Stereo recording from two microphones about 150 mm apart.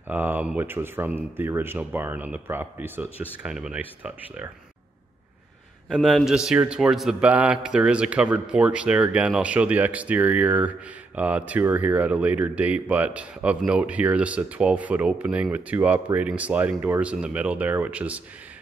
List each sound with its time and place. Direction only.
0.1 s a man's voice: 10° right (ahead or behind)
5.9 s a man's voice: 5° right (ahead or behind)